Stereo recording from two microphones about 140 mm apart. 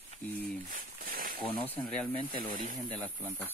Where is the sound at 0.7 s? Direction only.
90° right.